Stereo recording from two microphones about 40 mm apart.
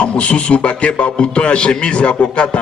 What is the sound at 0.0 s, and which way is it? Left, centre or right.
A man's voice, left.